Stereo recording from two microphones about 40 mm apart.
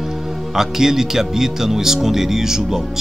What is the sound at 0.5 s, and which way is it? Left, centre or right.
Speech, centre.